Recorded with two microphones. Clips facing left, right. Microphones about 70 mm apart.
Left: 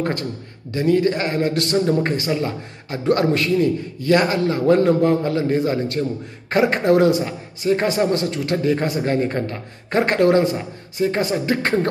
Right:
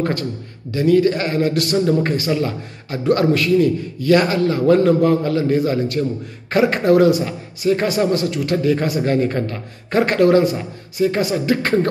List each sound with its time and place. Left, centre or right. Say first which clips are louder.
0.7 s a man's voice: right 3 dB; left